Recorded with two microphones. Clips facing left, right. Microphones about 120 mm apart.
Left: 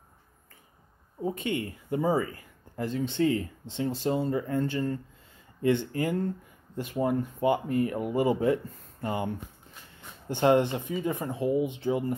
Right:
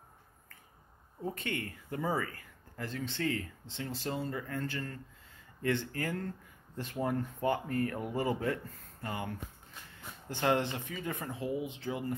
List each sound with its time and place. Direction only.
1.2 s speech: 15° left (ahead or behind)